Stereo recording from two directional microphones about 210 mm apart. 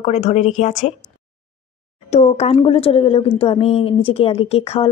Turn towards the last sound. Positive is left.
turn(degrees=30)  # may be behind; listen again after turning